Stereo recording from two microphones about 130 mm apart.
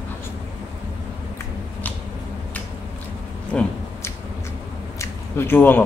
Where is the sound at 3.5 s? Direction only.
5° left (ahead or behind).